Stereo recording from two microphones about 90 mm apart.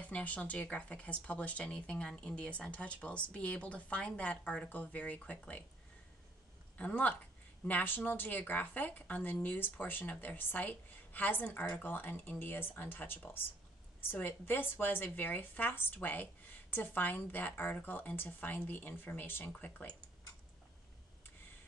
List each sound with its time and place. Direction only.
0.0 s speech: 15° left (ahead or behind)
6.8 s speech: 15° left (ahead or behind)